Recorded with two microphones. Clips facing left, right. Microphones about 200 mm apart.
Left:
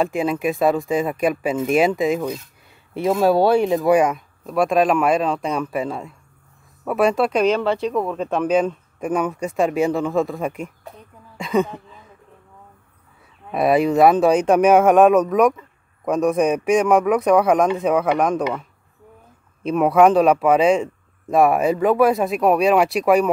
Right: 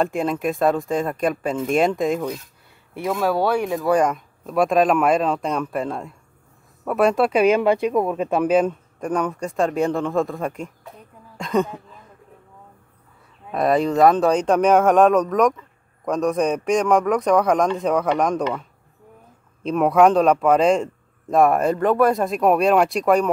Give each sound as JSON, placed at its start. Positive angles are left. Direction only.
{"t": 0.0, "sound": "speech", "side_deg": 5}
{"t": 2.9, "sound": "speech", "side_deg": 25}
{"t": 3.9, "sound": "speech", "side_deg": 5}
{"t": 11.3, "sound": "a sound", "side_deg": 5}
{"t": 13.5, "sound": "a man's voice", "side_deg": 10}
{"t": 19.6, "sound": "speech", "side_deg": 5}